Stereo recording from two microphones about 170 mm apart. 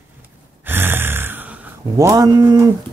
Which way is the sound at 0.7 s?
10° right (ahead or behind).